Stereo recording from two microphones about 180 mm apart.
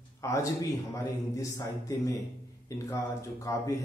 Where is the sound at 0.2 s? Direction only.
15° left (ahead or behind).